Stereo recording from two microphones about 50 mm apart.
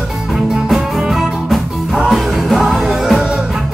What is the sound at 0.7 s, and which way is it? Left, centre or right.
Music, centre.